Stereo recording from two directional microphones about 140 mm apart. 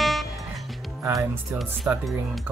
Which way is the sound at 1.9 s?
5° right (ahead or behind).